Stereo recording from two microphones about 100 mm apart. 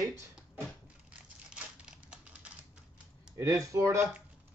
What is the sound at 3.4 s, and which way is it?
Speech, 30° right (ahead or behind).